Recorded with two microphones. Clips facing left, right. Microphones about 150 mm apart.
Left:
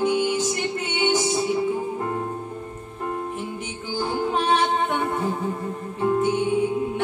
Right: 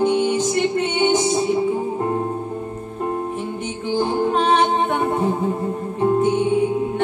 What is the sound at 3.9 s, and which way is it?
Music, 25° right (ahead or behind).